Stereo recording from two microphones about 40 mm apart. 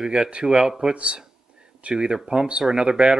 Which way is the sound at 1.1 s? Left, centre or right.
Right.